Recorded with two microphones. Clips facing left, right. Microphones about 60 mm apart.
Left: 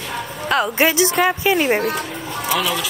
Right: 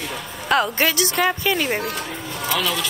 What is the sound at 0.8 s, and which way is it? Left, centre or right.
A woman's voice, centre.